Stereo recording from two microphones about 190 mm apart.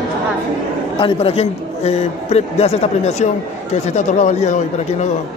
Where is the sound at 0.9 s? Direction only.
30° left (ahead or behind).